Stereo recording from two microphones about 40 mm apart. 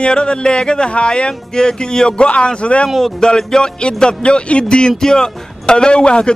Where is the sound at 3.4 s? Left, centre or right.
Centre.